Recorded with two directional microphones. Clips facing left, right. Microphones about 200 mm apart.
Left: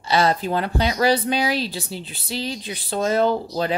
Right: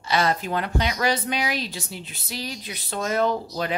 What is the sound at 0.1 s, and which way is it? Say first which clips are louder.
Speech: left 4 dB; 30° left (ahead or behind).